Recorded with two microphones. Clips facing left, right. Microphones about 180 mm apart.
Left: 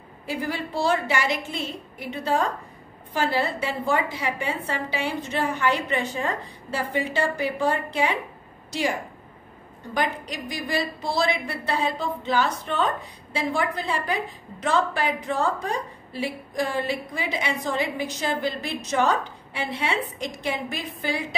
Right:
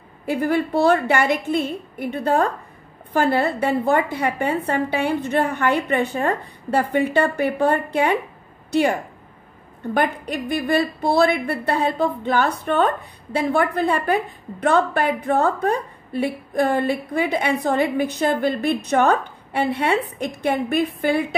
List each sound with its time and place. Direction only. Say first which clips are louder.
0.3 s a woman's voice: right 9 dB; 60° right (ahead or behind)
9.9 s a woman's voice: right 5 dB; 55° right (ahead or behind)